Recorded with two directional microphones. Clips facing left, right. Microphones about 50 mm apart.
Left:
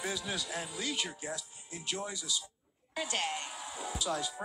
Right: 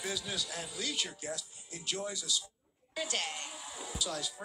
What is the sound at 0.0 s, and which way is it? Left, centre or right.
A woman's voice, centre.